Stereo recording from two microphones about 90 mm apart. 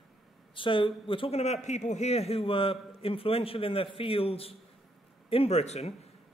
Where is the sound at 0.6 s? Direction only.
70° left (ahead or behind).